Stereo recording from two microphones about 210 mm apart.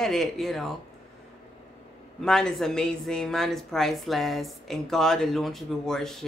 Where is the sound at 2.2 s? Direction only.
5° left (ahead or behind).